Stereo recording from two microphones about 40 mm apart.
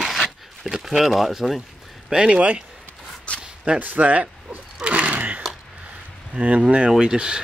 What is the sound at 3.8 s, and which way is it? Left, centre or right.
Speech, right.